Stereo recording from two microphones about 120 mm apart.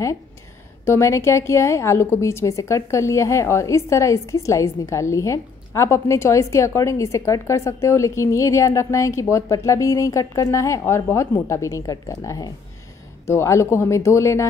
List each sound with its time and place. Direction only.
0.8 s a woman's voice: 25° left (ahead or behind)